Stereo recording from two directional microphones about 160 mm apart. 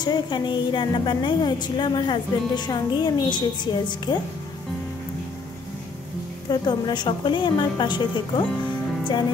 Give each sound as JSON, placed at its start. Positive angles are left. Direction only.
{"t": 0.0, "sound": "a woman's voice", "side_deg": 25}
{"t": 6.5, "sound": "a woman's voice", "side_deg": 25}